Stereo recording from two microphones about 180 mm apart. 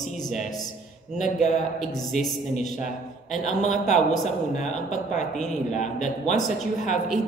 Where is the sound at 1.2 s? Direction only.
40° left (ahead or behind).